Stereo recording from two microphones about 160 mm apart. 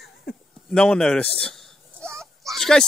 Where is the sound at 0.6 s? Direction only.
5° left (ahead or behind).